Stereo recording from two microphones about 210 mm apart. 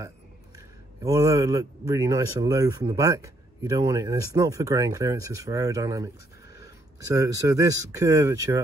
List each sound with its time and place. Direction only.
1.0 s speech: 15° right (ahead or behind)